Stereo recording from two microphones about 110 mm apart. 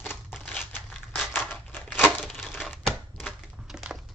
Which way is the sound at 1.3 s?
15° left (ahead or behind).